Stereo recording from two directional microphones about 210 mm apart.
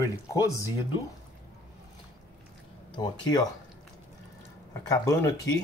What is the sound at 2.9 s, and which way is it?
Speech, 20° left (ahead or behind).